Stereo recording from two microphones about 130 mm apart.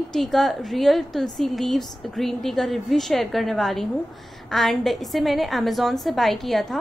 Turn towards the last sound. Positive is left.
turn(degrees=0)  # may be behind; listen again after turning